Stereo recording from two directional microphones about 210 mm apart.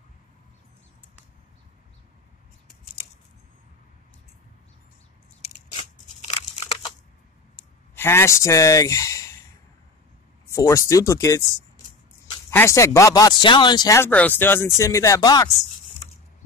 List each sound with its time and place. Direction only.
5.4 s a sound: 30° left (ahead or behind)
7.9 s speech: 10° left (ahead or behind)
10.5 s speech: 15° left (ahead or behind)